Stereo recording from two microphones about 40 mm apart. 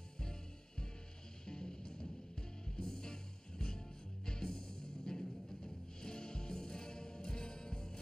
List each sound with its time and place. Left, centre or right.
0.2 s music: centre